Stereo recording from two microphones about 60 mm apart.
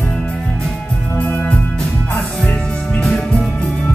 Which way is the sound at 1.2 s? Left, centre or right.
Left.